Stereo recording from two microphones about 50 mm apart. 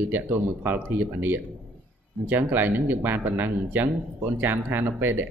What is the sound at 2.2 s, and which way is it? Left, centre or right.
Speech, right.